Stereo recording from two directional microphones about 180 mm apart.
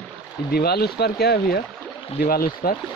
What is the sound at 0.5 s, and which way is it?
Speech, 60° left (ahead or behind).